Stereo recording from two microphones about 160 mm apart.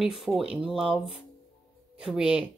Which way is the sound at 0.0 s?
5° right (ahead or behind).